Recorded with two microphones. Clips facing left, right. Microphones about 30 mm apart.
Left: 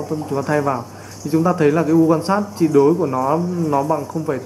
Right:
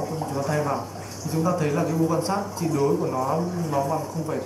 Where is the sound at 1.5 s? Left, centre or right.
Left.